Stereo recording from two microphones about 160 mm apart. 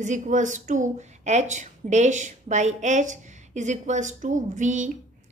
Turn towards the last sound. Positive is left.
turn(degrees=-50)  # may be behind; listen again after turning